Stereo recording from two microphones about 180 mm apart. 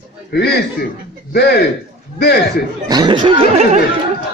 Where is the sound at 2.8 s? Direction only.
25° right (ahead or behind).